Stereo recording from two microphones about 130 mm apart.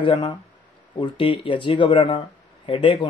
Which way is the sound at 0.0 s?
40° left (ahead or behind).